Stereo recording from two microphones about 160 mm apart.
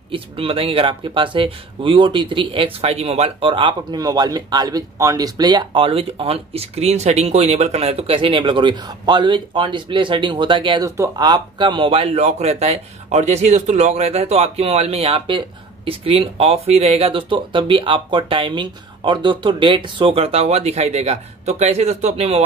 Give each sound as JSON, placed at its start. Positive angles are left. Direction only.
{"t": 0.1, "sound": "speech", "side_deg": -35}